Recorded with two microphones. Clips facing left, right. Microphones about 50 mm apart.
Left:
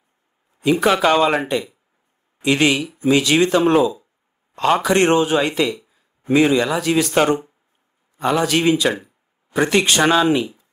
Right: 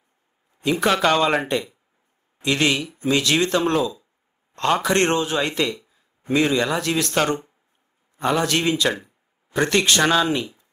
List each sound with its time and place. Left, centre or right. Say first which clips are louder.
0.6 s speech: left 4 dB; centre
2.4 s speech: left 4 dB; centre